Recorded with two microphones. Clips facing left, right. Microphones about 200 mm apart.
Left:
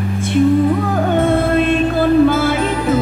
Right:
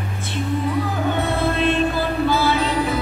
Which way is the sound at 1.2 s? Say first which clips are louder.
Left 8 dB; 50° left (ahead or behind).